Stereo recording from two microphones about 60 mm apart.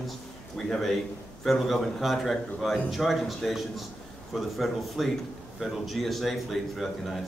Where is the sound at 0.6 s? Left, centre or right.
Centre.